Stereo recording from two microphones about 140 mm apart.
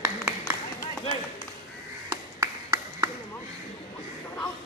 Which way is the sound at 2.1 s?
20° right (ahead or behind).